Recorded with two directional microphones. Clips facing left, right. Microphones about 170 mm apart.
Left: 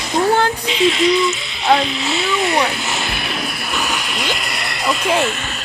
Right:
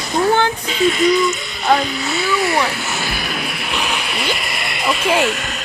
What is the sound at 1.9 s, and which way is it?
Speech, 25° left (ahead or behind).